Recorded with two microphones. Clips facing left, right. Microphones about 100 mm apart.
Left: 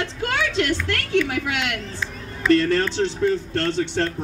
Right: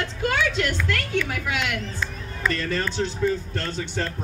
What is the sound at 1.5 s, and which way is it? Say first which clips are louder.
Speech: left 1 dB; 70° left (ahead or behind).